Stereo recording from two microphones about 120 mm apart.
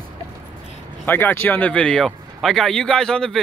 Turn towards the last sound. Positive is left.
turn(degrees=5)  # may be behind; listen again after turning